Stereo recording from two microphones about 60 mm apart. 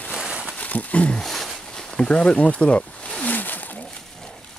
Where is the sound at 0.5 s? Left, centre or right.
Left.